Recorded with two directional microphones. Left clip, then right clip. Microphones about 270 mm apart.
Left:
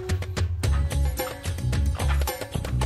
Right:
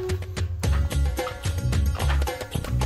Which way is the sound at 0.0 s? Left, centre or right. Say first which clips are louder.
Right 1 dB; centre.